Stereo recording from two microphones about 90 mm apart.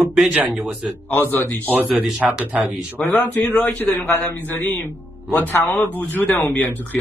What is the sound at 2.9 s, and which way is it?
A man's voice, 20° left (ahead or behind).